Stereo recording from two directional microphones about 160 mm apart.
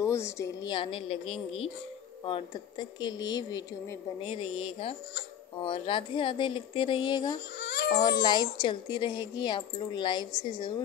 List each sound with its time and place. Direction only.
0.0 s speech: 15° left (ahead or behind)
7.6 s baby cry: 90° left
8.2 s speech: 25° left (ahead or behind)